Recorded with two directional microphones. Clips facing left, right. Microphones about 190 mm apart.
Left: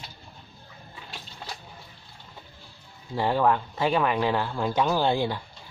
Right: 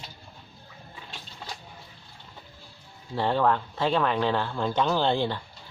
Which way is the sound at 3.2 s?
10° left (ahead or behind).